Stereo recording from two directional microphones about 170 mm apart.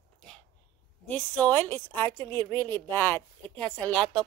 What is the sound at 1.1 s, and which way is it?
Speech, 10° left (ahead or behind).